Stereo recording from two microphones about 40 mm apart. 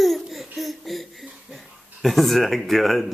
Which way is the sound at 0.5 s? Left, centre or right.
Centre.